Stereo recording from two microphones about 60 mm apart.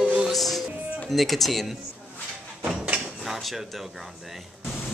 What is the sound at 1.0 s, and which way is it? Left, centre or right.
Speech, centre.